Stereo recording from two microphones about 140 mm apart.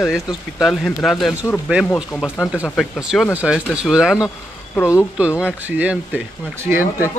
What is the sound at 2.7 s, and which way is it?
Speech, centre (ahead or behind).